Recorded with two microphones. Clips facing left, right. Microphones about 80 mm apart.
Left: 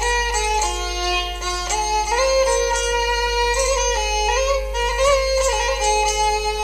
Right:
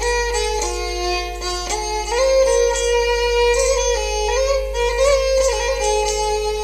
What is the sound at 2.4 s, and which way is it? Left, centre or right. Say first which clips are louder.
Music: right 3 dB; left.